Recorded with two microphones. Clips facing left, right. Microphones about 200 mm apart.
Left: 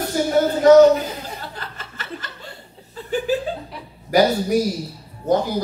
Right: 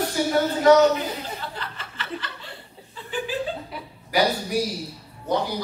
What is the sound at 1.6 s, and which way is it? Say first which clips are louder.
Chuckle: even; 45° left (ahead or behind).